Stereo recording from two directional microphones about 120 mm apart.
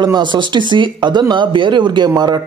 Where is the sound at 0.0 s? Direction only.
40° right (ahead or behind).